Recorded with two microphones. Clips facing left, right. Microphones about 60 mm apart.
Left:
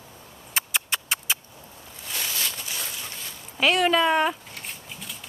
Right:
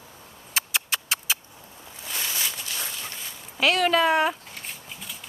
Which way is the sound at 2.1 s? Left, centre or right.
Centre.